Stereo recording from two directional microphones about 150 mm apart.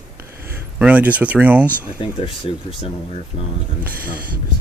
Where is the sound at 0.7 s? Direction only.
10° right (ahead or behind).